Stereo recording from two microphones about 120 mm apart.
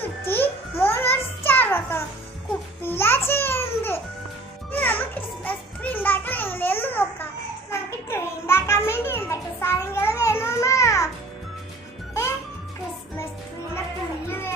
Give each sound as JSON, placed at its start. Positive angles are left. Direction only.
{"t": 0.0, "sound": "babbling", "side_deg": 15}
{"t": 4.7, "sound": "children playing", "side_deg": 15}
{"t": 7.7, "sound": "a sound", "side_deg": 20}
{"t": 12.1, "sound": "music", "side_deg": 20}
{"t": 13.7, "sound": "music", "side_deg": 20}